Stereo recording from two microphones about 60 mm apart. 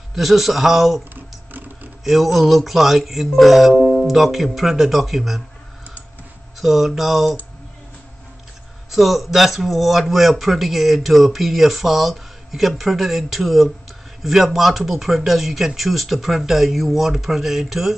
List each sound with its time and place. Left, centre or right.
0.1 s speech: centre
1.1 s a sound: right
2.0 s speech: centre
6.6 s speech: centre
8.9 s speech: centre